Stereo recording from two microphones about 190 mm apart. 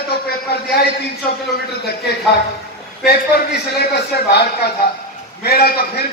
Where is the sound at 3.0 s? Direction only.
55° left (ahead or behind).